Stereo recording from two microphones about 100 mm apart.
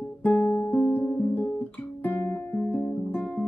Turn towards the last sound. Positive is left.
turn(degrees=10)  # may be behind; listen again after turning